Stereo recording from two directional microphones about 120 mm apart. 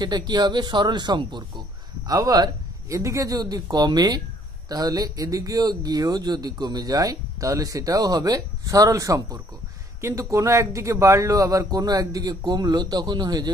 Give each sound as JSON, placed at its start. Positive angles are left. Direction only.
{"t": 0.0, "sound": "a man's voice", "side_deg": -35}